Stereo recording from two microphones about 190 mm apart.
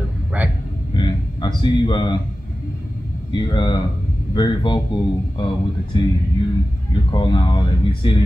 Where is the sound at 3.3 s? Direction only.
25° left (ahead or behind).